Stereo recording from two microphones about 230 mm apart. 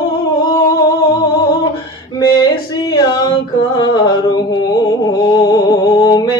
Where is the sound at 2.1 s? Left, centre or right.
Centre.